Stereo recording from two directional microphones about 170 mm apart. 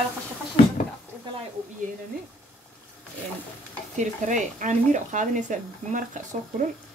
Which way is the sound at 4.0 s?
45° right (ahead or behind).